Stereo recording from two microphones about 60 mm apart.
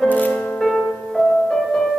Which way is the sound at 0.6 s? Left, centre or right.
Centre.